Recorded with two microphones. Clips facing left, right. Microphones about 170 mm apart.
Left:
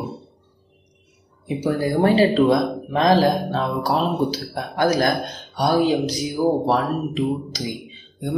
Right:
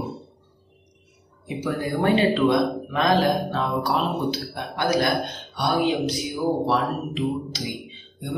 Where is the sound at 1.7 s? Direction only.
35° left (ahead or behind).